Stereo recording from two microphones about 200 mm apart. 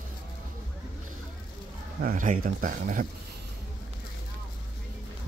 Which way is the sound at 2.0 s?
45° right (ahead or behind).